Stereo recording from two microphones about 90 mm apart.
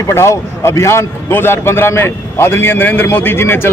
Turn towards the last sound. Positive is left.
turn(degrees=25)  # may be behind; listen again after turning